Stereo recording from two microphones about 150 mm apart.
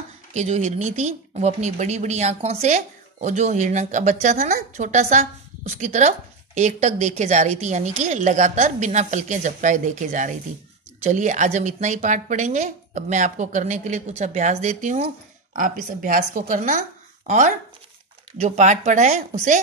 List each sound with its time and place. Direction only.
0.3 s speech: 50° right (ahead or behind)
15.5 s a woman's voice: 65° right (ahead or behind)